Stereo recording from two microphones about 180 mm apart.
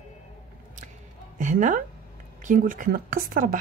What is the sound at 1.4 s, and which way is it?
A woman's voice, 45° right (ahead or behind).